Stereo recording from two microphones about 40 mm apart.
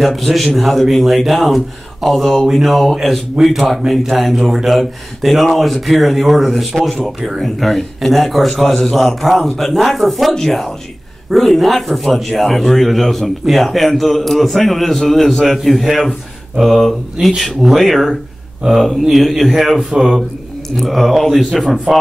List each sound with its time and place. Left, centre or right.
0.0 s a man's voice: centre
21.9 s speech: right